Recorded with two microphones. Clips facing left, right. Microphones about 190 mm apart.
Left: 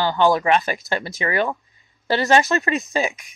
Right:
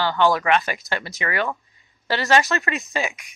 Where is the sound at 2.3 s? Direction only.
35° left (ahead or behind).